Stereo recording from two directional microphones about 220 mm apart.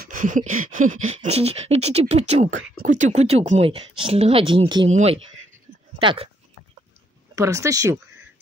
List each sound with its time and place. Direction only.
0.0 s a sound: 35° right (ahead or behind)
1.0 s speech: 30° right (ahead or behind)
7.3 s speech: 15° right (ahead or behind)